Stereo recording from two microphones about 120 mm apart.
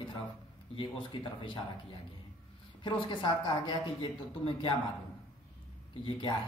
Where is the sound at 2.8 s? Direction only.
45° left (ahead or behind).